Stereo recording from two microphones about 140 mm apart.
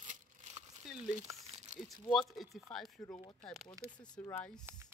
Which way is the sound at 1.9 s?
Centre (ahead or behind).